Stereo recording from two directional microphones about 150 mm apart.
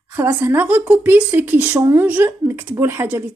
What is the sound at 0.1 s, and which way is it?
A woman's voice, 20° right (ahead or behind).